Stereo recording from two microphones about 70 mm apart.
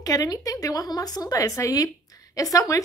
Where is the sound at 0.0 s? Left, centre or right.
Left.